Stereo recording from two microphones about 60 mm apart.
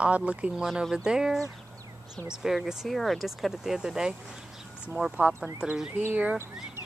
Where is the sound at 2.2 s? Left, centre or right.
Centre.